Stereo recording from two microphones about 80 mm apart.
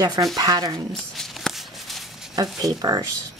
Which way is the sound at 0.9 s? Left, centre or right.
Centre.